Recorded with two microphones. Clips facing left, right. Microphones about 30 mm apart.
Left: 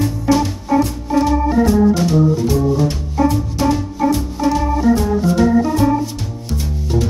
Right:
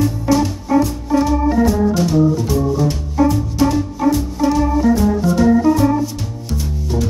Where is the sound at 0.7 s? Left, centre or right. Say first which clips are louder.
Right 1 dB; centre.